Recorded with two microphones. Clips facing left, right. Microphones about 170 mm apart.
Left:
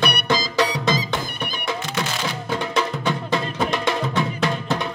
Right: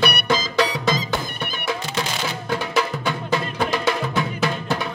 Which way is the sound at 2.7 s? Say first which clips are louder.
Left 1 dB; 5° right (ahead or behind).